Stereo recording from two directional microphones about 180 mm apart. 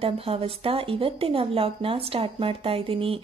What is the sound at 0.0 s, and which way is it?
Speech, 30° right (ahead or behind).